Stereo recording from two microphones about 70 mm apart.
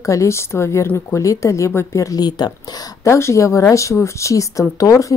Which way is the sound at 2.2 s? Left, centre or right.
Left.